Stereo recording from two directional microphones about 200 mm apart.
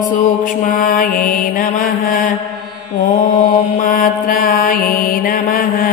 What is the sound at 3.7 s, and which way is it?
Mantra, 40° left (ahead or behind).